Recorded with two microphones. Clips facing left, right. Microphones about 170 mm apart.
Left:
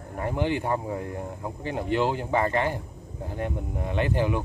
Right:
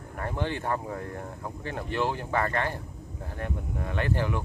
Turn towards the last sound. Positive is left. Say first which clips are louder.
# left 4 dB
turn(degrees=15)  # may be behind; listen again after turning